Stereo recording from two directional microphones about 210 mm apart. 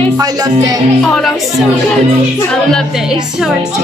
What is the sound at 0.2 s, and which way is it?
Speech, 15° right (ahead or behind).